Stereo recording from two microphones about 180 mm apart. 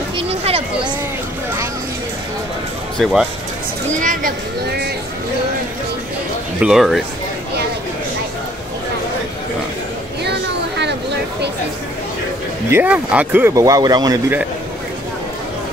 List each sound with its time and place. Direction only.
0.3 s speech: 35° right (ahead or behind)
3.0 s speech: centre (ahead or behind)
3.9 s speech: 45° right (ahead or behind)
6.6 s speech: centre (ahead or behind)
10.2 s a sound: 70° right (ahead or behind)
12.7 s speech: 5° right (ahead or behind)